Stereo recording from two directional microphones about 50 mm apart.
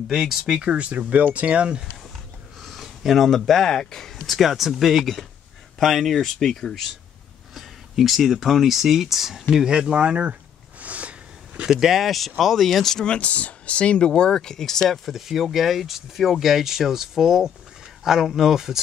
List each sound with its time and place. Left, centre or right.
0.1 s speech: centre
0.7 s speech: right
2.6 s a sound: centre
3.0 s speech: centre; by 10.3 s right
10.8 s a sound: right
11.6 s speech: centre
13.1 s speech: left; by 15.0 s centre
15.0 s speech: centre